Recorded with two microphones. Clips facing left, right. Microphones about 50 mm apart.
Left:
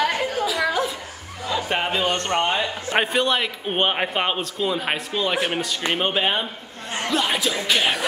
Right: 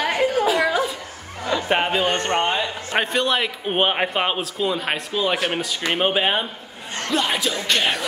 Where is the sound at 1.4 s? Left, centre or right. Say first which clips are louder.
Right 2 dB; right.